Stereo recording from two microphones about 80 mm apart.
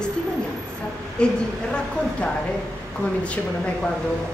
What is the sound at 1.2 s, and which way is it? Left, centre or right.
Speech, centre.